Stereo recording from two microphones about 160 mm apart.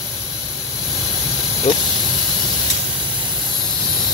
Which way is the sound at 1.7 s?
50° left (ahead or behind).